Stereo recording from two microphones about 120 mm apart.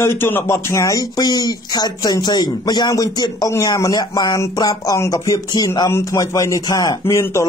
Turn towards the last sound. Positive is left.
turn(degrees=25)  # may be behind; listen again after turning